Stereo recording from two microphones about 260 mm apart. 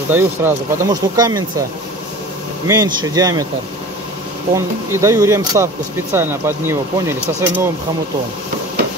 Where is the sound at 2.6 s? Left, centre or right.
Centre.